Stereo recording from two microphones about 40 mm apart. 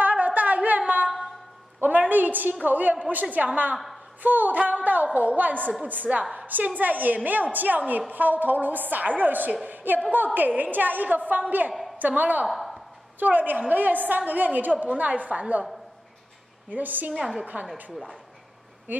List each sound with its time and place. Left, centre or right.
0.0 s a sound: right
1.8 s a woman's voice: right
3.7 s a woman's voice: centre
4.2 s a woman's voice: right
12.4 s a sound: centre
13.2 s a woman's voice: right
16.7 s a woman's voice: right
17.2 s a woman's voice: centre
18.9 s a woman's voice: right